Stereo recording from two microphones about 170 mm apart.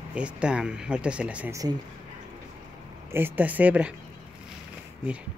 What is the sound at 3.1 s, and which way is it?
Speech, 10° right (ahead or behind).